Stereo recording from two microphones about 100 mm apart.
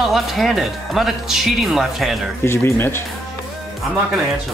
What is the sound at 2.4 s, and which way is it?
Speech, 25° left (ahead or behind).